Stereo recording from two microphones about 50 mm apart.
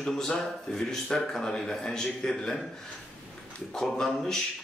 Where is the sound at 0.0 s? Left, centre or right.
Centre.